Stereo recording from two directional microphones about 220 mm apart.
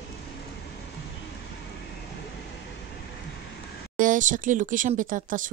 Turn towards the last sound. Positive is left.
turn(degrees=-40)  # may be behind; listen again after turning